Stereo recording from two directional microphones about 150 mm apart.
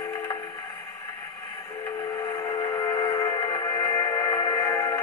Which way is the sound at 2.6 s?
25° left (ahead or behind).